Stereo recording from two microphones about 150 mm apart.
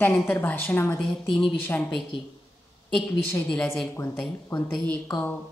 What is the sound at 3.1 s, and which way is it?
Speech, 10° left (ahead or behind).